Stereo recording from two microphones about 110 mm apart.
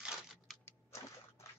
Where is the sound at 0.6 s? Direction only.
25° left (ahead or behind).